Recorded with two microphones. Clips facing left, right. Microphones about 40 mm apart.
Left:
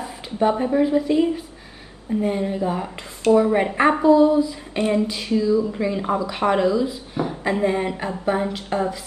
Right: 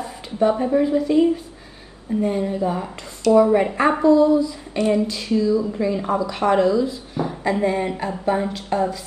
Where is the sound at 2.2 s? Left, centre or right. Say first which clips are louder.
Right 1 dB; centre.